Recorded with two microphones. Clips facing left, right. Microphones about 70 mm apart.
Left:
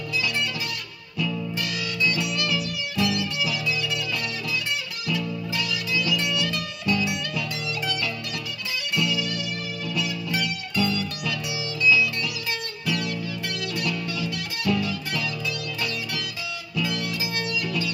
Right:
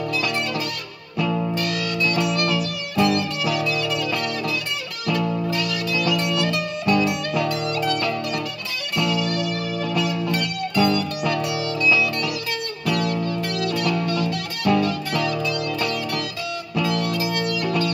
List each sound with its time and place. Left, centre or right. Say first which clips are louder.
1.1 s music: right 6 dB; right